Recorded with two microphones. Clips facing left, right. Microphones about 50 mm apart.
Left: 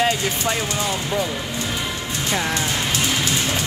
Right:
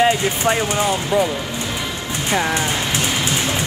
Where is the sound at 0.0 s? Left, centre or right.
Right.